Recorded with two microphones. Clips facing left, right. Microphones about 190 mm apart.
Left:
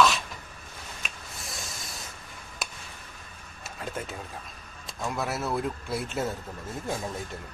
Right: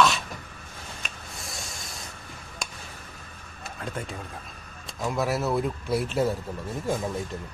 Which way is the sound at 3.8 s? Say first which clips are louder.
Right 1 dB; centre (ahead or behind).